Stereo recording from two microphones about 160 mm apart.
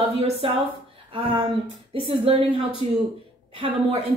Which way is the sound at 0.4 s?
35° right (ahead or behind).